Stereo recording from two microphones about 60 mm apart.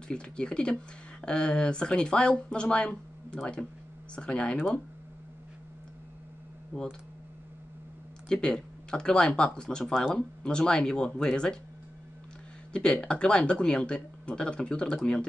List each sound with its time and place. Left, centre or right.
0.1 s speech: centre
4.1 s speech: centre
6.7 s speech: centre
8.3 s speech: centre
12.7 s speech: centre